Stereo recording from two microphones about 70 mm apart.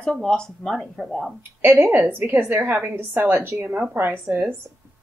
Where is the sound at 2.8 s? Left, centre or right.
Right.